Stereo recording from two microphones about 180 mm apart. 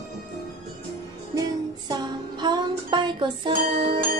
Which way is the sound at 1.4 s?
20° right (ahead or behind).